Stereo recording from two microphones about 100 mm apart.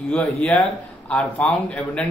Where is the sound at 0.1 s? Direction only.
15° left (ahead or behind).